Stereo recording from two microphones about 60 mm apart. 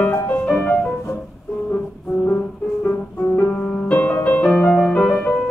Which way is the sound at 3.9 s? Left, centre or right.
Left.